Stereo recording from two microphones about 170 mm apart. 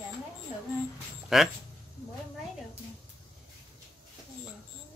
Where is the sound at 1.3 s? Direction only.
Centre (ahead or behind).